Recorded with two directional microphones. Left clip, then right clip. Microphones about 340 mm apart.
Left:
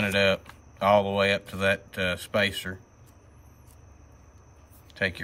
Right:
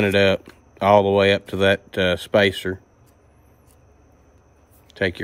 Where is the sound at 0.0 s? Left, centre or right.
Right.